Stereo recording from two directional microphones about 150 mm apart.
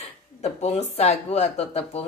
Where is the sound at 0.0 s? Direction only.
45° left (ahead or behind).